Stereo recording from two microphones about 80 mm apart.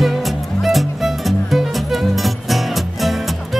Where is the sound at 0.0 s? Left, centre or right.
Centre.